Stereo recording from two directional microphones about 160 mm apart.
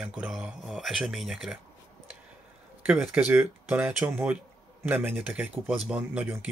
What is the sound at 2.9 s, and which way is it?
Speech, 10° right (ahead or behind).